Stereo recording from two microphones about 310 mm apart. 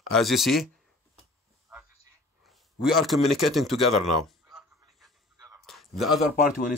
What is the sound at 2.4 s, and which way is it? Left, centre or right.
A man's voice, centre.